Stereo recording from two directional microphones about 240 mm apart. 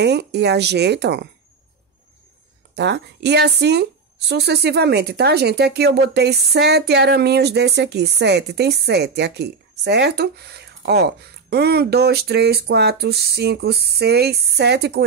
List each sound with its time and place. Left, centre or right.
0.0 s a woman's voice: right
2.7 s a woman's voice: right